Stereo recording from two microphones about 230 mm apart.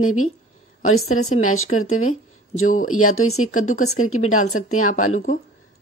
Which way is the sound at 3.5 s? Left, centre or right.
Left.